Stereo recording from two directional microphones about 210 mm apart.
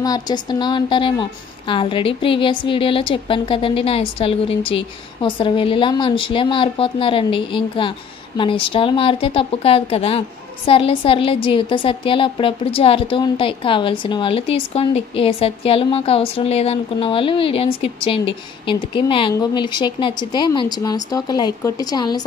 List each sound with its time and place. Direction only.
0.0 s a woman's voice: 20° left (ahead or behind)